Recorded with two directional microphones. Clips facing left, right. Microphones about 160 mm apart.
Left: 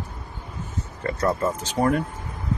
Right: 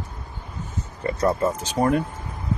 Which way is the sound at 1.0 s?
20° right (ahead or behind).